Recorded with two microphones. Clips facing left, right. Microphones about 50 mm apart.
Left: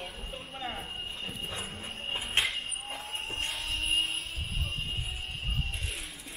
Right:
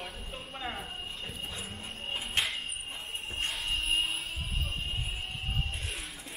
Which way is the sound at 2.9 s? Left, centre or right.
Left.